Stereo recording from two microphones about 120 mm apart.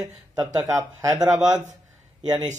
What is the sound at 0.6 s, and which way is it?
Speech, 25° right (ahead or behind).